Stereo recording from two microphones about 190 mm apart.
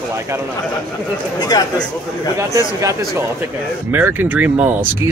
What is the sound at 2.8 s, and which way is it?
Speech, 15° right (ahead or behind).